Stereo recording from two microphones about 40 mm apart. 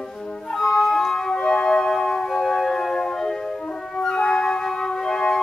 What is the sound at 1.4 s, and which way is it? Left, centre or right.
Music, left.